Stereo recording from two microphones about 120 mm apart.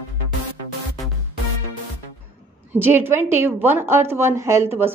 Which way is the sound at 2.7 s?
20° right (ahead or behind).